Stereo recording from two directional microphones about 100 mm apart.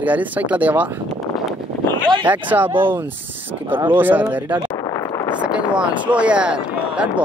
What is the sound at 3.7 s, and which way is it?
Speech, 20° right (ahead or behind).